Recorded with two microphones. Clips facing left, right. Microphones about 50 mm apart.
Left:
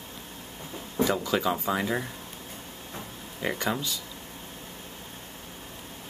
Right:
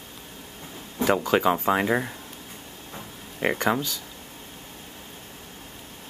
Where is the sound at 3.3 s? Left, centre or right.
Right.